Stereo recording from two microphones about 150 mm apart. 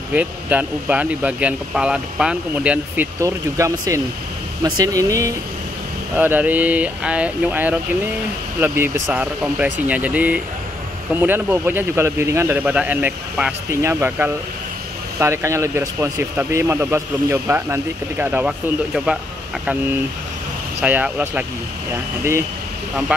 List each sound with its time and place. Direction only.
0.1 s speech: 10° right (ahead or behind)
20.8 s speech: 10° right (ahead or behind)